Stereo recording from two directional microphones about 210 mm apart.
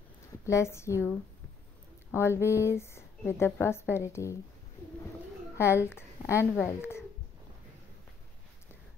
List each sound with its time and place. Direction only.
0.3 s a woman's voice: 15° left (ahead or behind)
2.1 s a woman's voice: 10° left (ahead or behind)
5.9 s speech: 10° left (ahead or behind)